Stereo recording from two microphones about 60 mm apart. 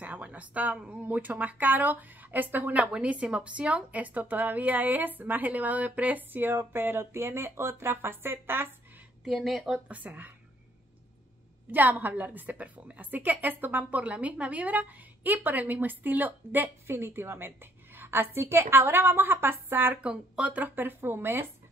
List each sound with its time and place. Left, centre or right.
0.0 s speech: right
9.2 s speech: centre
9.8 s speech: right
11.7 s speech: right
13.8 s a woman's voice: right
20.0 s speech: centre
20.6 s a woman's voice: right